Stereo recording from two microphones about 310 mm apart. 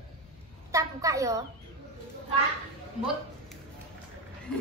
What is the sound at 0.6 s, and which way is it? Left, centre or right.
Speech, centre.